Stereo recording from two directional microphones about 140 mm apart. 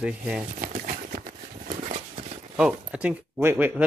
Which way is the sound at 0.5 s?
60° right (ahead or behind).